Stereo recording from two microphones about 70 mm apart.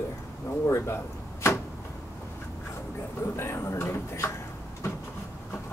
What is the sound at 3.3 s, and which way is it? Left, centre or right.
Speech, left.